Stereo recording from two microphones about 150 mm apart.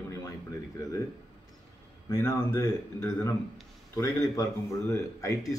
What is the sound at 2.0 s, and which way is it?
A man's voice, 15° left (ahead or behind).